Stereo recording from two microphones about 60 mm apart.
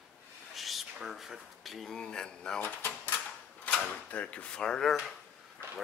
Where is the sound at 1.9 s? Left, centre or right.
Centre.